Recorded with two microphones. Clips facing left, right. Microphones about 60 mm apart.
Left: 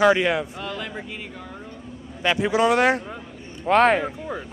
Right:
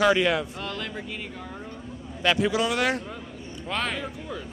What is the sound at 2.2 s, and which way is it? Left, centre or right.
Speech, centre.